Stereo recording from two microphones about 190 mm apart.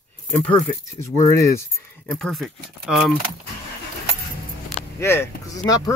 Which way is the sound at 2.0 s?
Centre (ahead or behind).